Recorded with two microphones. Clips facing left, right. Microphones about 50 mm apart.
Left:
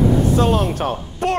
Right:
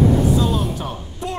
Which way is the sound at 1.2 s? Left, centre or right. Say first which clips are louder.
Left 8 dB; left.